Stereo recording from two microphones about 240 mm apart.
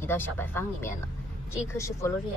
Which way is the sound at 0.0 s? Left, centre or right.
Centre.